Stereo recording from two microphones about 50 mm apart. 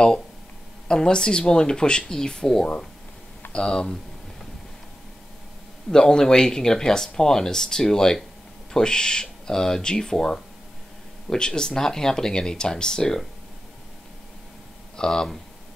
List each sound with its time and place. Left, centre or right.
0.8 s speech: centre
5.9 s speech: centre
15.0 s speech: centre